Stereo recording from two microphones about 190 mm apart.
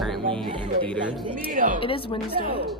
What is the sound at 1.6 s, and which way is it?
Speech, 45° right (ahead or behind).